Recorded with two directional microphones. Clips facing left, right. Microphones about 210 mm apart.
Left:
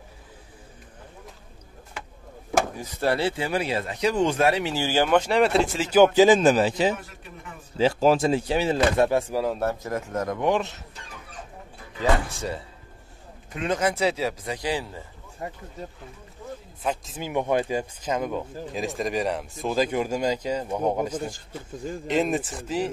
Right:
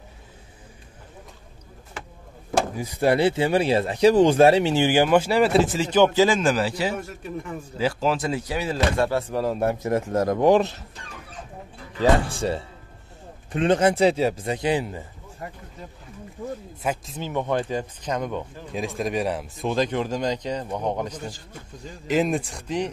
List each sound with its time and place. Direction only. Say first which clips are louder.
2.7 s speech: right 4 dB; 10° right (ahead or behind); by 9.2 s 20° left (ahead or behind)
9.3 s speech: right 1 dB; centre (ahead or behind)
9.8 s speech: right 6 dB; 30° right (ahead or behind)
12.0 s a man's voice: right 4 dB; 30° right (ahead or behind)
15.4 s speech: left 2 dB; 25° left (ahead or behind)
16.8 s speech: right 1 dB; 5° right (ahead or behind)
17.1 s speech: left 3 dB; 10° left (ahead or behind)